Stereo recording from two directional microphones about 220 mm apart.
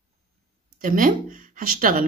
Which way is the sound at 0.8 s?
40° right (ahead or behind).